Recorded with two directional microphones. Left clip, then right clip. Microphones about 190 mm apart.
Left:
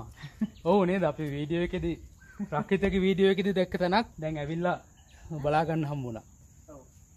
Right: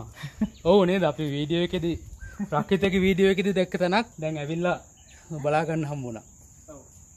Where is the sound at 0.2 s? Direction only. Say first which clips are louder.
Right 6 dB; 50° right (ahead or behind).